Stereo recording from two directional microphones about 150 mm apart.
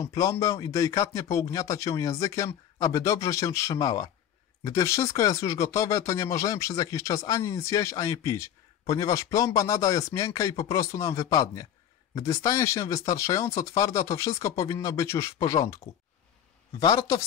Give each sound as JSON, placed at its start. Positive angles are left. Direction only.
{"t": 0.0, "sound": "speech", "side_deg": 20}
{"t": 16.8, "sound": "speech", "side_deg": 25}